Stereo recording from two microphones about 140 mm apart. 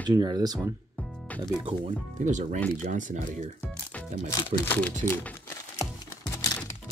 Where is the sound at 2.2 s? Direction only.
60° right (ahead or behind).